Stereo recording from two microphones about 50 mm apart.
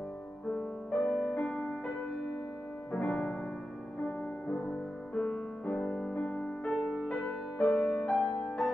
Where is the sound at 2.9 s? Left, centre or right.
Left.